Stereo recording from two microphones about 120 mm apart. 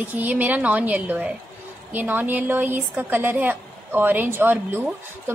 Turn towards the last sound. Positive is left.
turn(degrees=-15)  # may be behind; listen again after turning